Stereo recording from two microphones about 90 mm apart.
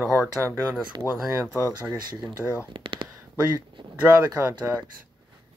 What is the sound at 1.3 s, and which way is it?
Speech, 35° right (ahead or behind).